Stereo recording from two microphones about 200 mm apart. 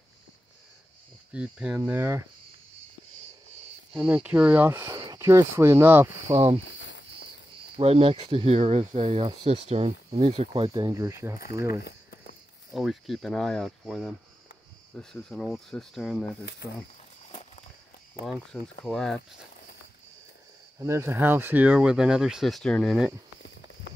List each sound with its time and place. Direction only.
1.3 s speech: 5° right (ahead or behind)
3.9 s speech: 5° right (ahead or behind)
6.3 s speech: 30° right (ahead or behind)
7.7 s speech: 30° right (ahead or behind)
11.8 s cricket: 50° left (ahead or behind)
12.7 s speech: centre (ahead or behind)
15.2 s speech: centre (ahead or behind)
16.6 s speech: 55° left (ahead or behind)
18.2 s speech: centre (ahead or behind)
20.8 s speech: 15° right (ahead or behind)